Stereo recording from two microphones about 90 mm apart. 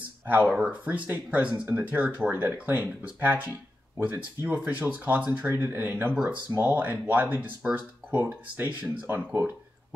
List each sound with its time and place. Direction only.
0.3 s speech: 20° right (ahead or behind)
9.0 s speech: 30° right (ahead or behind)